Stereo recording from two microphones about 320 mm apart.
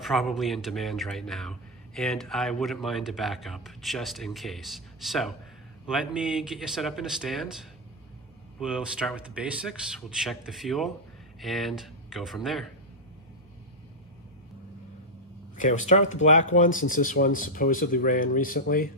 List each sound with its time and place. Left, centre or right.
0.0 s a man's voice: centre
15.5 s speech: left